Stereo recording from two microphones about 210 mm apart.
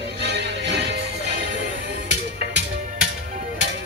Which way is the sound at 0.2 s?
55° right (ahead or behind).